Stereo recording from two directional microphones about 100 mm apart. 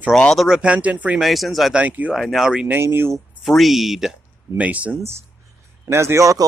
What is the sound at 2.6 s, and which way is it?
Speech, 20° right (ahead or behind).